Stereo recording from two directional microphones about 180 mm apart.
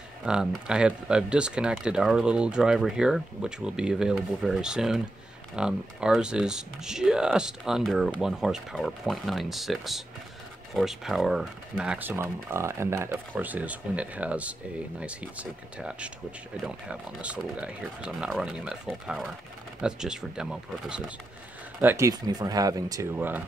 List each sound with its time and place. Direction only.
0.2 s speech: 5° right (ahead or behind)
21.8 s speech: 15° right (ahead or behind)